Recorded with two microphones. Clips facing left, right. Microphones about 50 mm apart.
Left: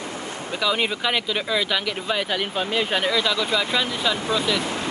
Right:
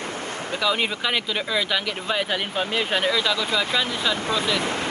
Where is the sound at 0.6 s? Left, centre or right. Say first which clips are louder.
Left 1 dB; centre.